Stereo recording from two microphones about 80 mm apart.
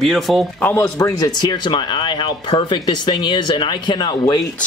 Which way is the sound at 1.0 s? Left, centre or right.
Left.